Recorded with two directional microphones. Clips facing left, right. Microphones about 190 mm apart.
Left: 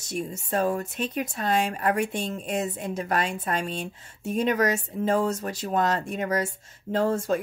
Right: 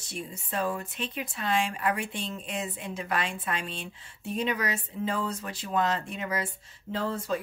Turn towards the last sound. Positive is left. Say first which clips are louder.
# left 7 dB
turn(degrees=45)  # may be behind; listen again after turning